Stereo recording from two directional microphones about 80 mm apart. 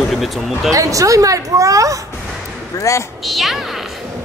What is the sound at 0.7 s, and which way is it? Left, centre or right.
A woman's voice, right.